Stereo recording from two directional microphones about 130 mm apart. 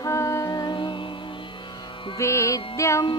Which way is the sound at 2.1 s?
20° left (ahead or behind).